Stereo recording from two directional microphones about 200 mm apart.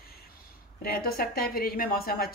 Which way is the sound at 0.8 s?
50° left (ahead or behind).